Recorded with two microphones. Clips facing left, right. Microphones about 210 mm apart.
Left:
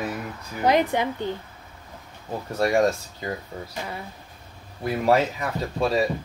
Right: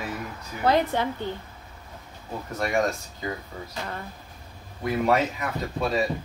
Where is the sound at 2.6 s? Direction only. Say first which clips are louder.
Left 4 dB; 35° left (ahead or behind).